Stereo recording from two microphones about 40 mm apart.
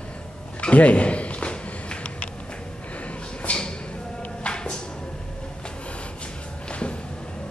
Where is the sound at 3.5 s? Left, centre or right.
Left.